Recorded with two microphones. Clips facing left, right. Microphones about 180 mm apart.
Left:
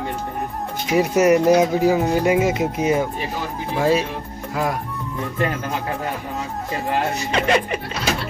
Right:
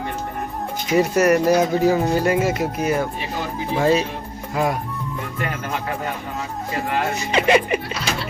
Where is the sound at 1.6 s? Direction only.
5° left (ahead or behind).